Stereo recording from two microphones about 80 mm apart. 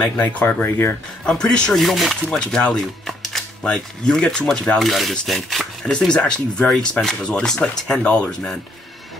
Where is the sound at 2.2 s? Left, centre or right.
Centre.